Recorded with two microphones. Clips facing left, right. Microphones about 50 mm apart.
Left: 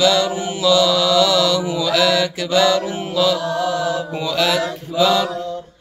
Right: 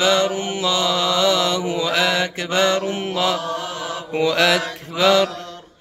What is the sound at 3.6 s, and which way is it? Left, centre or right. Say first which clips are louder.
Mantra: left 8 dB; right.